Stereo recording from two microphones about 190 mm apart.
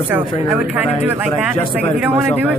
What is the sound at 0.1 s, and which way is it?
Speech, 5° right (ahead or behind).